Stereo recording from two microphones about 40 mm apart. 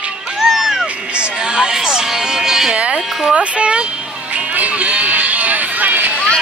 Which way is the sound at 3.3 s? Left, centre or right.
Right.